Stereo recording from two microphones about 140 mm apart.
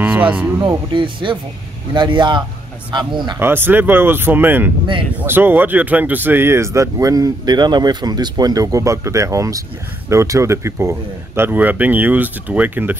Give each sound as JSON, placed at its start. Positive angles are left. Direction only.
{"t": 0.0, "sound": "speech", "side_deg": -10}
{"t": 0.6, "sound": "speech", "side_deg": -35}
{"t": 3.3, "sound": "speech", "side_deg": -15}